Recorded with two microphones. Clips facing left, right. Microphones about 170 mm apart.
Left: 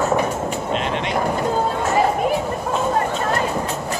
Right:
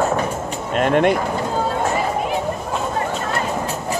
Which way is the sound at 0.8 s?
50° right (ahead or behind).